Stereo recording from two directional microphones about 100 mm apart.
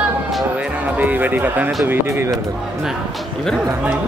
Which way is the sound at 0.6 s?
15° right (ahead or behind).